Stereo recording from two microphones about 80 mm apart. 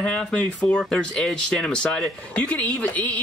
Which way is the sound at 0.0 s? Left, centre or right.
Centre.